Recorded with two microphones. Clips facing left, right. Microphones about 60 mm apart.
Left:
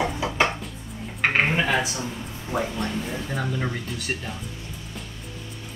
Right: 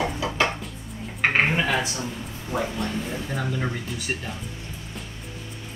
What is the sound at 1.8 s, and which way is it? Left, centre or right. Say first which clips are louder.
Speech: even; left.